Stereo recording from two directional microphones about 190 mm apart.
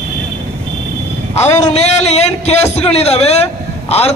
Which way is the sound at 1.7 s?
35° left (ahead or behind).